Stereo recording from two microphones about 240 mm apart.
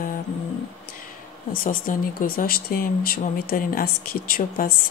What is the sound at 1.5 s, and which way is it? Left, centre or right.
Speech, left.